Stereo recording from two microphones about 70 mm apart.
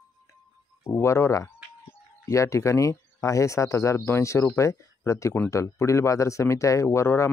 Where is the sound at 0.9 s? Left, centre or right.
Left.